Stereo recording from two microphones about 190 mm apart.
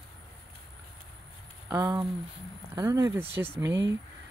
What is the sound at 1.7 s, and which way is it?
Speech, 20° right (ahead or behind).